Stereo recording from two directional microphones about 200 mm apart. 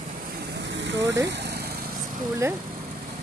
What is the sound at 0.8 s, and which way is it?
Speech, 65° right (ahead or behind).